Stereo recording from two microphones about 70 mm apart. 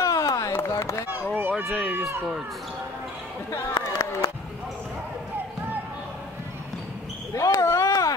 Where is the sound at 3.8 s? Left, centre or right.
Left.